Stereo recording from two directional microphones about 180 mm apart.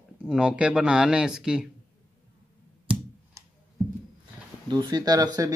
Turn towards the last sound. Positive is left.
turn(degrees=-20)  # may be behind; listen again after turning